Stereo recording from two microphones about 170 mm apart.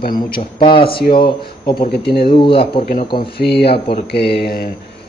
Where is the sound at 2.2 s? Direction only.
30° left (ahead or behind).